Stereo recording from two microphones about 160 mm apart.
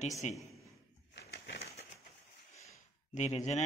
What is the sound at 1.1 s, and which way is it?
Bird, 90° left.